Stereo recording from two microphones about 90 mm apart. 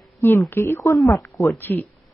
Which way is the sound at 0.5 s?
25° left (ahead or behind).